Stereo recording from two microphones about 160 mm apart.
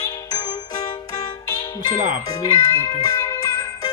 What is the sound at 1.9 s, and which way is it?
Speech, 55° right (ahead or behind).